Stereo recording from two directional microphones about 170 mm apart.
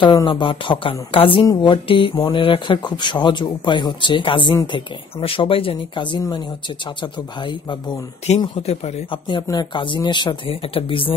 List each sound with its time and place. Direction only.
0.0 s a woman's voice: 25° left (ahead or behind)
8.4 s speech: 35° left (ahead or behind)